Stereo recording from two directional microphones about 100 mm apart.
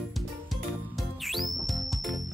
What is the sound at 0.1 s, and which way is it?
Music, centre (ahead or behind).